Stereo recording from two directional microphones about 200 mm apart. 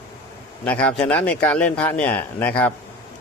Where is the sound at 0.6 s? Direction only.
5° left (ahead or behind).